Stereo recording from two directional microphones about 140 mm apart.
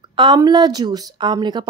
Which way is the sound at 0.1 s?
35° right (ahead or behind).